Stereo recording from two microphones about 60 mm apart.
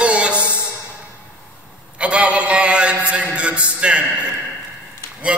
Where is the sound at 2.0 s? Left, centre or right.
Centre.